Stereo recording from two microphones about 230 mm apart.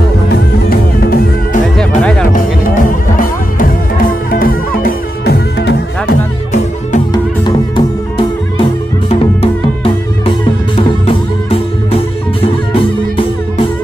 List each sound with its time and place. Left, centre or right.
0.7 s music: left
7.1 s music: centre